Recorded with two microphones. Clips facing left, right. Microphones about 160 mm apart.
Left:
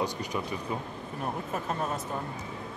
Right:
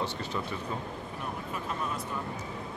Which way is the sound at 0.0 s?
15° left (ahead or behind).